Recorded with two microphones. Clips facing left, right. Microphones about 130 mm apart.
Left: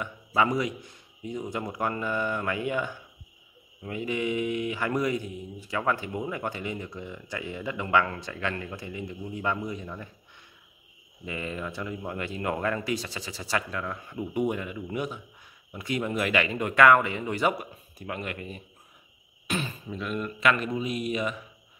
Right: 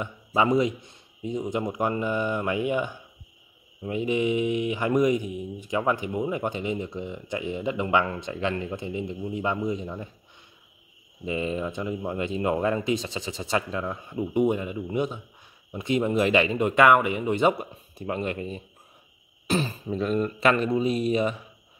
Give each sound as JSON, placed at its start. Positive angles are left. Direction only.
{"t": 0.0, "sound": "speech", "side_deg": -25}
{"t": 11.2, "sound": "speech", "side_deg": -20}